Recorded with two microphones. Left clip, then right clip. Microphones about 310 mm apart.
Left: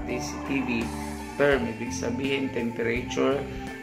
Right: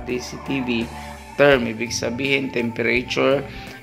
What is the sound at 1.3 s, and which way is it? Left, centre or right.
A man's voice, right.